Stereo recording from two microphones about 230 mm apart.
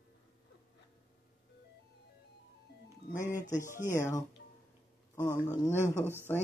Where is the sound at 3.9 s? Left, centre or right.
Centre.